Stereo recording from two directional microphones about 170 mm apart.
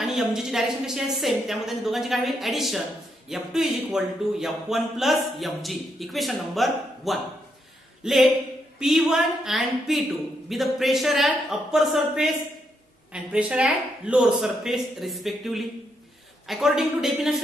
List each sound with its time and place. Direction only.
0.0 s speech: centre (ahead or behind)